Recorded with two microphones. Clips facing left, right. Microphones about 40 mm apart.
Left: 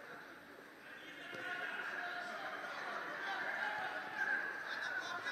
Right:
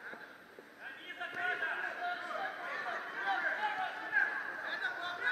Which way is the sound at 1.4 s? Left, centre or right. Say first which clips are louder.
Right 7 dB; right.